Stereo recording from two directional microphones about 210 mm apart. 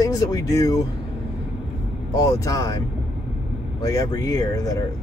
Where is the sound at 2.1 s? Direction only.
15° left (ahead or behind).